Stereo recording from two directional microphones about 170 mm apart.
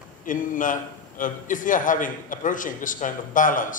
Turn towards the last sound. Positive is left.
turn(degrees=50)  # may be behind; listen again after turning